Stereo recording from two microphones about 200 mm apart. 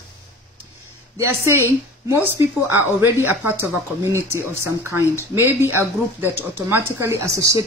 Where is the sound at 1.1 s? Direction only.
15° right (ahead or behind).